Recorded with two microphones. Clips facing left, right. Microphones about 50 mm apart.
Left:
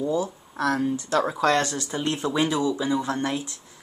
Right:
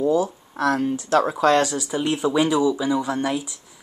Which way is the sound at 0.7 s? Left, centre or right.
Right.